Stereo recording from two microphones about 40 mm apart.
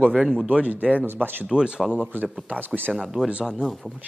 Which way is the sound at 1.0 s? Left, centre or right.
Right.